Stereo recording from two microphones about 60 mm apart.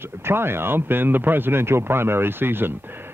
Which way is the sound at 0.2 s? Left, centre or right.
Right.